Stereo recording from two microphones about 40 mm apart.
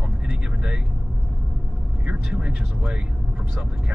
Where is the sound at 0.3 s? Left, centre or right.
Right.